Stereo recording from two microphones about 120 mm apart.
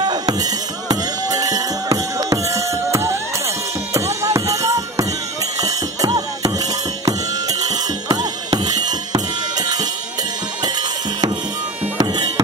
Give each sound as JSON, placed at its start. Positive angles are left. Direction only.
{"t": 0.0, "sound": "music", "side_deg": -35}